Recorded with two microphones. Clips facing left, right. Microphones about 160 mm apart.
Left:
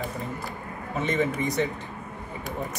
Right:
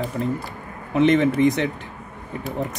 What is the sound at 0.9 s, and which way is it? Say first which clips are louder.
Speech: right 9 dB; 80° right.